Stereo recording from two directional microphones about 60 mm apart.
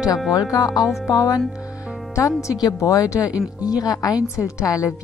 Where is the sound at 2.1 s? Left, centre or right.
Left.